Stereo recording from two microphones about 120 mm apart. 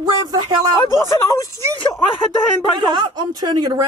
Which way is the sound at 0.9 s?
25° left (ahead or behind).